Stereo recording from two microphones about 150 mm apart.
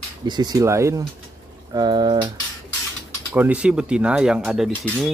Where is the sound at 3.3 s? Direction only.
10° right (ahead or behind).